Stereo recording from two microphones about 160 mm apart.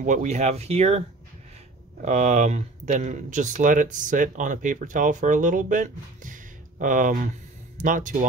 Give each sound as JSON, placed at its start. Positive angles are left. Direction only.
{"t": 0.0, "sound": "speech", "side_deg": -50}